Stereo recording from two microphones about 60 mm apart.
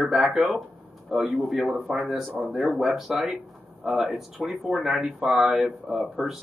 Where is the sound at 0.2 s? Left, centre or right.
Centre.